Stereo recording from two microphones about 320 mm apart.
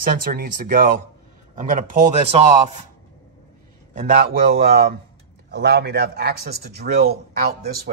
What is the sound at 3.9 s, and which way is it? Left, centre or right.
A man's voice, right.